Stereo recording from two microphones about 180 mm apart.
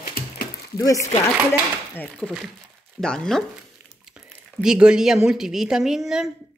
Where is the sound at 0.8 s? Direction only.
20° left (ahead or behind).